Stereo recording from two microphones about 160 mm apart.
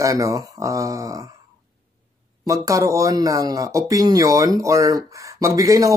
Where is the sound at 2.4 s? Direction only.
20° right (ahead or behind).